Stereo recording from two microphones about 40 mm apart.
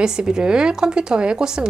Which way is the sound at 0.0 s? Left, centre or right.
Centre.